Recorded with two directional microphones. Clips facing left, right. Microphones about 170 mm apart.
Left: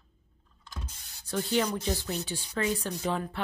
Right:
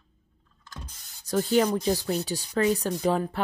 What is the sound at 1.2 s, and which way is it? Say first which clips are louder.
Speech: right 6 dB; 40° right (ahead or behind).